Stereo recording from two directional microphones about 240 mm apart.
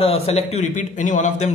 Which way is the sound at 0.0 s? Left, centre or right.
Left.